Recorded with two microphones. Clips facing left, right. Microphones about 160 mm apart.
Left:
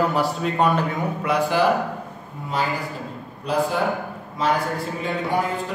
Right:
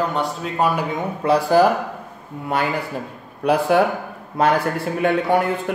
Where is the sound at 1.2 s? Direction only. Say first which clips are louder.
Right 6 dB; 40° right (ahead or behind).